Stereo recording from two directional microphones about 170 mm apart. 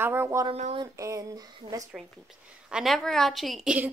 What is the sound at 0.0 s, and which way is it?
Speech, 15° right (ahead or behind).